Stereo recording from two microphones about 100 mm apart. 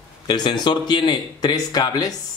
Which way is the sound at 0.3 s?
50° left (ahead or behind).